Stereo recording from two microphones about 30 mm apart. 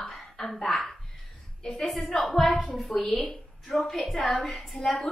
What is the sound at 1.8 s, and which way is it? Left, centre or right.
A woman's voice, centre.